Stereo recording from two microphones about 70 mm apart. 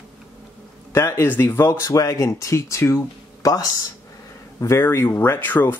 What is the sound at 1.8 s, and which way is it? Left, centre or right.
Speech, left.